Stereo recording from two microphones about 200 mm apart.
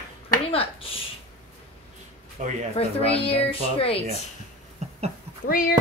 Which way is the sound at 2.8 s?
30° left (ahead or behind).